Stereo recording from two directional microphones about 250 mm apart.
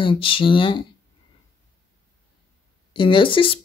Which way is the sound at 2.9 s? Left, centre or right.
Centre.